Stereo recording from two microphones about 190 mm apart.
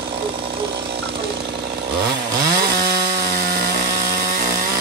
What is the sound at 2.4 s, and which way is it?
Chainsaw, 55° right (ahead or behind).